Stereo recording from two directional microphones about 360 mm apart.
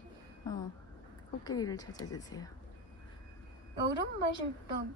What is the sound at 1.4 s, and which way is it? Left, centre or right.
Speech, centre.